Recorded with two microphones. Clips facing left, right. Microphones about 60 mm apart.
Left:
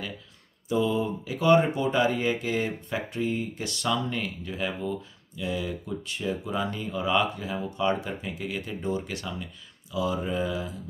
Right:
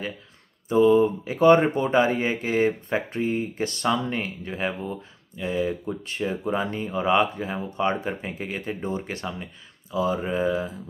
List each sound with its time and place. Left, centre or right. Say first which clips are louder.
0.7 s speech: right 8 dB; right